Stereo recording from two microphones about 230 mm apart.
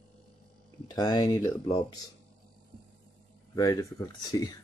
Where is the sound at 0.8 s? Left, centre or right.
Centre.